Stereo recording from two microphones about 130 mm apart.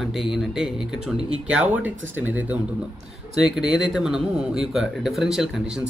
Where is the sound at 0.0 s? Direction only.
Centre (ahead or behind).